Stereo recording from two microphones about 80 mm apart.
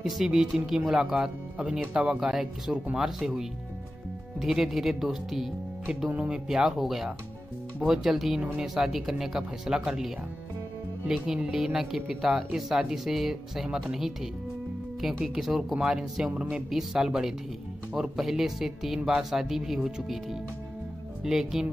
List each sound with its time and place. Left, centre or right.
0.0 s speech: centre
15.2 s speech: centre